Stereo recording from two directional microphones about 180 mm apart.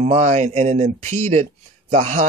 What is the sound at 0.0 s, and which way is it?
Speech, 40° right (ahead or behind).